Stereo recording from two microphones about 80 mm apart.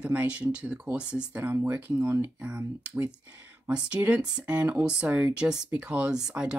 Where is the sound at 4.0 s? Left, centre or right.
Centre.